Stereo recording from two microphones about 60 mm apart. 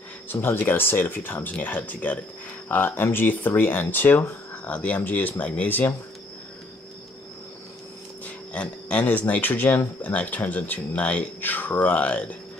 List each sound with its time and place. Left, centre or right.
0.3 s speech: left
8.5 s a man's voice: left